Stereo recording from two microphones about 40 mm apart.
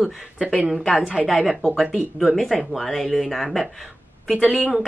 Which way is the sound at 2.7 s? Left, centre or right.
Centre.